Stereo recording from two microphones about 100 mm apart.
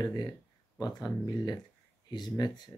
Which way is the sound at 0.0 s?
45° left (ahead or behind).